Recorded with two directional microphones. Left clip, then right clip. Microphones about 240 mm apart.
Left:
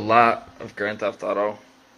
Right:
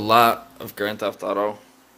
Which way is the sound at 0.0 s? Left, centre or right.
Right.